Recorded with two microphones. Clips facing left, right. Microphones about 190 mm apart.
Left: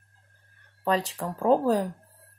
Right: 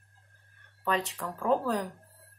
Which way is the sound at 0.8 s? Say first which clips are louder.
Left 4 dB; 35° left (ahead or behind).